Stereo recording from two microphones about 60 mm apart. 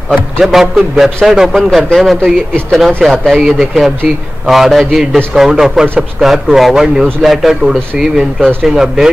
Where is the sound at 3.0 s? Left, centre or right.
Centre.